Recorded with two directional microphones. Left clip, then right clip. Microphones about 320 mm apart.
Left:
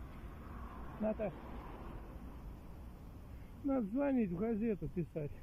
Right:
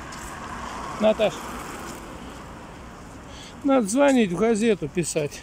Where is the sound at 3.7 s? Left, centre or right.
Centre.